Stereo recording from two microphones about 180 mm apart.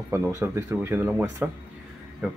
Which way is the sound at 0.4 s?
15° right (ahead or behind).